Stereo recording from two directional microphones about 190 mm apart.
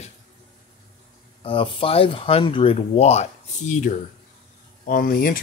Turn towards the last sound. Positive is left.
turn(degrees=50)  # may be behind; listen again after turning